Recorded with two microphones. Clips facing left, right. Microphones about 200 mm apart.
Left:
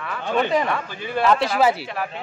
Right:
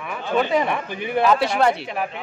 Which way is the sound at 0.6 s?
20° right (ahead or behind).